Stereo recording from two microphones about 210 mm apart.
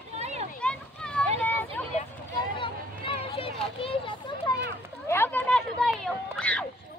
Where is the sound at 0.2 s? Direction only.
30° right (ahead or behind).